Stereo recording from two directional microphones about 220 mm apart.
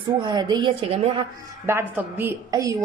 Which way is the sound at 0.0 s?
20° right (ahead or behind).